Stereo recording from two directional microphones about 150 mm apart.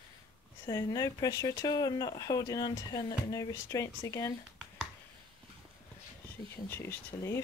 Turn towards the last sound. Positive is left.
turn(degrees=15)  # may be behind; listen again after turning